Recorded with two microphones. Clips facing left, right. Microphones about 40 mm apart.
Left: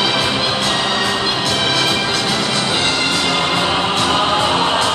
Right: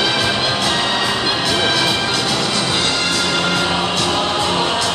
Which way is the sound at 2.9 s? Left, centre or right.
Centre.